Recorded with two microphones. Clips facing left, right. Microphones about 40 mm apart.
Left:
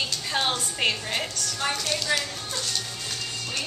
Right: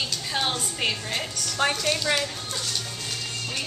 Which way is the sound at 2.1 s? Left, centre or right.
Right.